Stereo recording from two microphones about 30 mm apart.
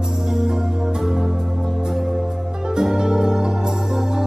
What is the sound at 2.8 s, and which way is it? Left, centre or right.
Music, centre.